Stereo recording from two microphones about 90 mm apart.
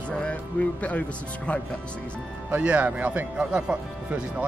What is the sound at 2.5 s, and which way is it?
Speech, 15° right (ahead or behind).